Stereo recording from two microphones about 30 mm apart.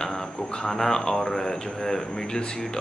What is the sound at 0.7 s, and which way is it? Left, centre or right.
A man's voice, centre.